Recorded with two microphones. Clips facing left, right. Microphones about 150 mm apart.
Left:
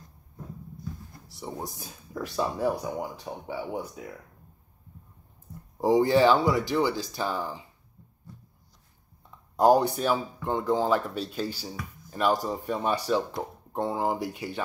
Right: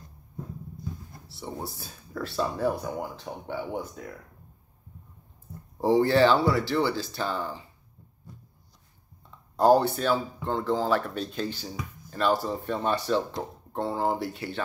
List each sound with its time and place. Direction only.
1.2 s speech: 15° left (ahead or behind)
5.8 s speech: 15° left (ahead or behind)
9.6 s speech: 15° left (ahead or behind)